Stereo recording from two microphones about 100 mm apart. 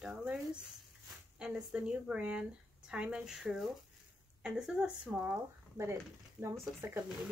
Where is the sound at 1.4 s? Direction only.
10° right (ahead or behind).